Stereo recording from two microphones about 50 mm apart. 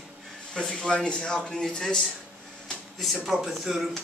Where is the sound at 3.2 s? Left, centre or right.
Centre.